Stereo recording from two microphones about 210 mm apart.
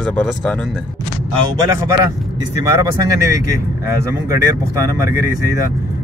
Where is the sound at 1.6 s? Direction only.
15° right (ahead or behind).